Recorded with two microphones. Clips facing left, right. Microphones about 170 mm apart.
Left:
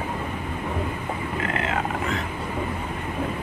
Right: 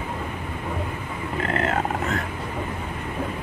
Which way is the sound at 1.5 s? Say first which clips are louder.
Right 5 dB; 40° right (ahead or behind).